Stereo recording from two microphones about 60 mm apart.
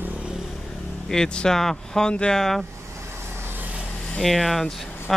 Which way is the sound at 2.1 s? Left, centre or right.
Centre.